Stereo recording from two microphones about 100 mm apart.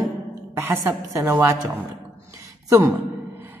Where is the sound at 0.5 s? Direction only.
25° right (ahead or behind).